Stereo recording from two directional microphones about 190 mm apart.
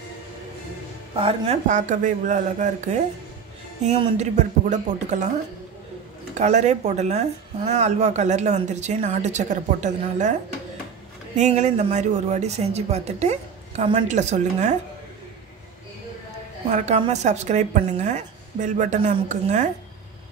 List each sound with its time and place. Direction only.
1.1 s speech: 30° right (ahead or behind)
6.3 s speech: 35° right (ahead or behind)
11.3 s speech: 40° right (ahead or behind)
16.7 s speech: 40° right (ahead or behind)